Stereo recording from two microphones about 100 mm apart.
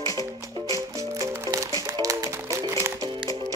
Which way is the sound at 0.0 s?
35° left (ahead or behind).